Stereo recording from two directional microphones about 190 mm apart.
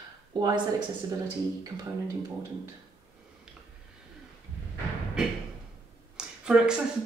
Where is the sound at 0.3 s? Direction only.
20° right (ahead or behind).